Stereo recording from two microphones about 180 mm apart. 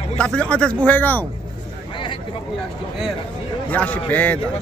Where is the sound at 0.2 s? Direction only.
5° left (ahead or behind).